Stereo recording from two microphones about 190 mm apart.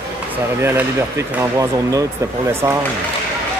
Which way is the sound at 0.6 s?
15° right (ahead or behind).